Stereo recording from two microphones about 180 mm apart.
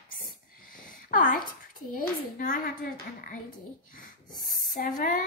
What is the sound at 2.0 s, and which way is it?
Speech, 50° left (ahead or behind).